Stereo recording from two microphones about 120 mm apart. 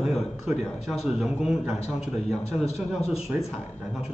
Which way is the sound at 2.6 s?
60° left (ahead or behind).